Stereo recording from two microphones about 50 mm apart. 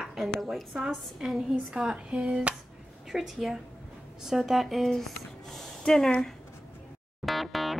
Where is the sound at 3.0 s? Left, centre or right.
Centre.